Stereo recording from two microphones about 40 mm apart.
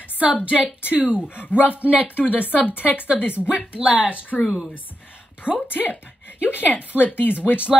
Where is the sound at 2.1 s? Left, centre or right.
Left.